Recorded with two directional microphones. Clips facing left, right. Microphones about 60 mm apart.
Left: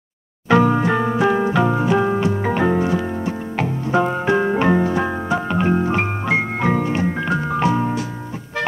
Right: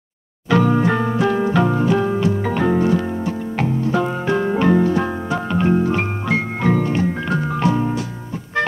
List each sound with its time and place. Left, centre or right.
0.5 s music: left
0.7 s music: centre